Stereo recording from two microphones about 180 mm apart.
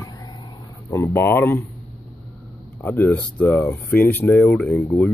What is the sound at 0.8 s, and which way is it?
Speech, 15° left (ahead or behind).